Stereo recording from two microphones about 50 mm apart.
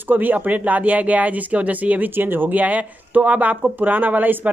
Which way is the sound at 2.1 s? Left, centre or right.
Right.